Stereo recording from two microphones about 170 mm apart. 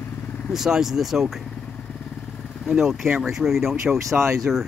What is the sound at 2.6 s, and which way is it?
Speech, centre (ahead or behind).